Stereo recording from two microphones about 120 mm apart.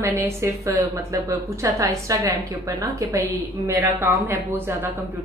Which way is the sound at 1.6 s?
25° right (ahead or behind).